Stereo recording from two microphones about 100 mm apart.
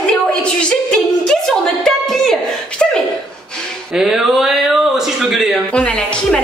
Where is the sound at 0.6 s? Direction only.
5° left (ahead or behind).